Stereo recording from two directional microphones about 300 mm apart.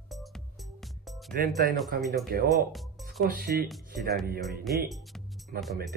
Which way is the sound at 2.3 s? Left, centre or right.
Right.